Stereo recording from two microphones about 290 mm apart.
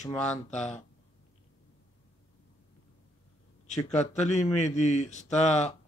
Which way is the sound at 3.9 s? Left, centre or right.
Left.